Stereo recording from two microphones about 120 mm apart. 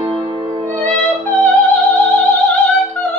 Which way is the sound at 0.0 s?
45° right (ahead or behind).